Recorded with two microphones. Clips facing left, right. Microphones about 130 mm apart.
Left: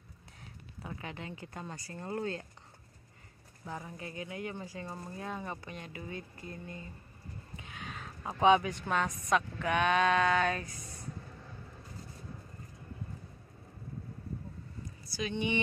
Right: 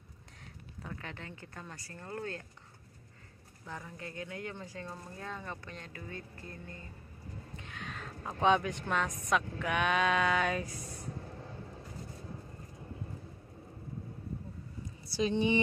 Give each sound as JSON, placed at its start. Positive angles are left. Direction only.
{"t": 0.8, "sound": "speech", "side_deg": 10}
{"t": 3.6, "sound": "speech", "side_deg": 15}
{"t": 7.5, "sound": "speech", "side_deg": 5}
{"t": 15.0, "sound": "speech", "side_deg": -30}